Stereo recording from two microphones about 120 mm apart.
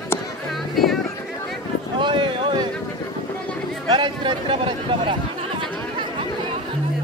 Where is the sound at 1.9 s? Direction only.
45° right (ahead or behind).